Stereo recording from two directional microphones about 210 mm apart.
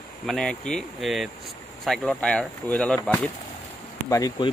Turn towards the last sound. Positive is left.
turn(degrees=15)  # may be behind; listen again after turning